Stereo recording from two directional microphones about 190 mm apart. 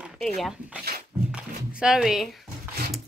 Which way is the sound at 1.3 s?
5° right (ahead or behind).